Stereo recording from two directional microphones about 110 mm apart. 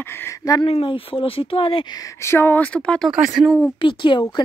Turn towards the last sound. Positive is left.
turn(degrees=50)  # may be behind; listen again after turning